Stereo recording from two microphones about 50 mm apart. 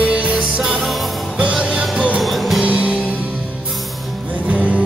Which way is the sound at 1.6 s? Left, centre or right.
Right.